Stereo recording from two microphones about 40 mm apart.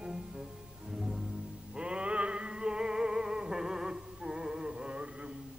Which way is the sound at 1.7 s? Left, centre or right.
Right.